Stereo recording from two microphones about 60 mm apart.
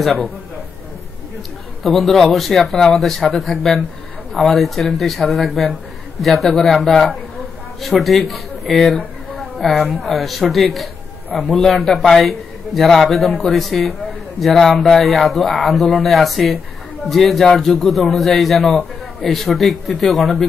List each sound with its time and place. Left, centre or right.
1.8 s a man's voice: centre
9.4 s a sound: centre
10.0 s a man's voice: centre